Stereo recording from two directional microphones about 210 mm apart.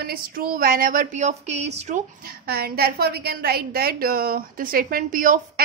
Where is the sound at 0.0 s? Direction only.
45° right (ahead or behind).